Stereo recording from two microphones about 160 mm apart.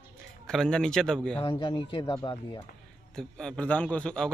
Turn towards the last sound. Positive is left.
turn(degrees=5)  # may be behind; listen again after turning